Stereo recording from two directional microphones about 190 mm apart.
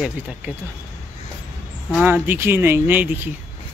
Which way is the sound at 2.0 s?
10° right (ahead or behind).